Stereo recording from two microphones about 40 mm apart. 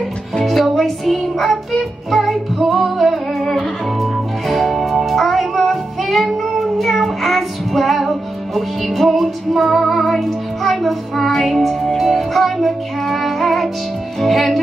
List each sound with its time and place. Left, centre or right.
0.7 s music: centre